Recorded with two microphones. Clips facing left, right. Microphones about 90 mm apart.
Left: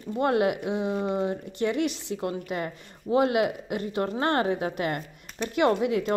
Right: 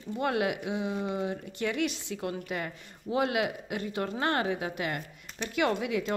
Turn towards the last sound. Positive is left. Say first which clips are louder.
# left 5 dB
turn(degrees=40)  # may be behind; listen again after turning